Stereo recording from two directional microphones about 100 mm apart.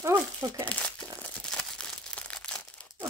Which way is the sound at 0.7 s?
10° left (ahead or behind).